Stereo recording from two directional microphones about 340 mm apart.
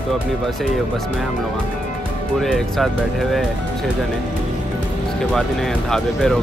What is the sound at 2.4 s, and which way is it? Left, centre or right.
Speech, centre.